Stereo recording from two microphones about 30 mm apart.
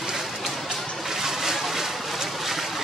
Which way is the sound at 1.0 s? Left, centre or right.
Centre.